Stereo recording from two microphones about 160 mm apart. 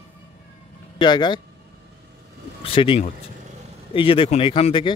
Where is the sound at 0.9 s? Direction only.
25° left (ahead or behind).